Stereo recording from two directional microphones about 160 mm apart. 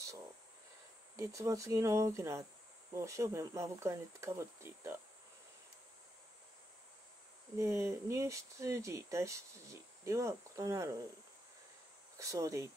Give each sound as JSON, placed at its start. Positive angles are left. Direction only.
{"t": 1.1, "sound": "speech", "side_deg": -20}
{"t": 7.5, "sound": "speech", "side_deg": -15}
{"t": 12.2, "sound": "speech", "side_deg": -20}